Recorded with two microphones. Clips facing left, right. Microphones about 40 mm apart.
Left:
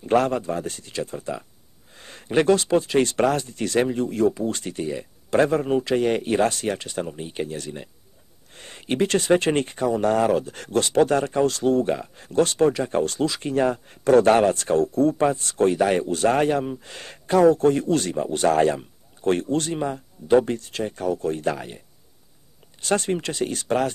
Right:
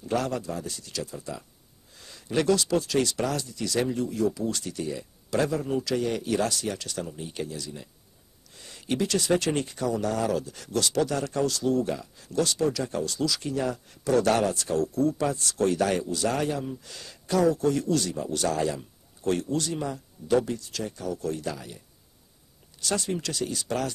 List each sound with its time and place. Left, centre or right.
0.0 s speech: left
7.5 s speech: left
16.0 s speech: left